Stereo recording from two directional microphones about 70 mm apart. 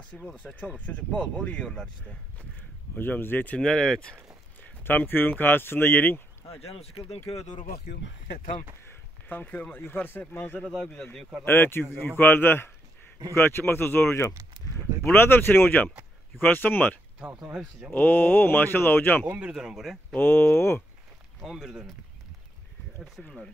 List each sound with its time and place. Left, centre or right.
0.4 s speech: centre
3.0 s speech: left
3.5 s speech: centre
4.8 s speech: left
9.3 s speech: left
17.6 s a man's voice: centre
17.9 s speech: left
19.4 s a man's voice: centre
20.2 s speech: left
21.4 s a man's voice: centre
23.2 s speech: centre